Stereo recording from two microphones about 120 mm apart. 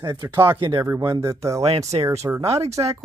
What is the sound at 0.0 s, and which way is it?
Speech, 20° right (ahead or behind).